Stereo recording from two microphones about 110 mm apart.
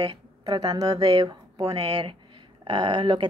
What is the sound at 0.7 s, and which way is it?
A woman's voice, 35° right (ahead or behind).